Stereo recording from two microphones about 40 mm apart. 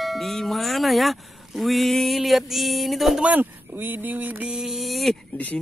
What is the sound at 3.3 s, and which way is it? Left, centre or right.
Speech, right.